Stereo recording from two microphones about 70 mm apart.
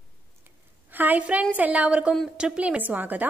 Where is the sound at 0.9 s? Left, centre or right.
Right.